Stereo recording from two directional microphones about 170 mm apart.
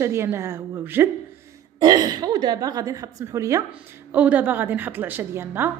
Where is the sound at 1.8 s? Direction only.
25° right (ahead or behind).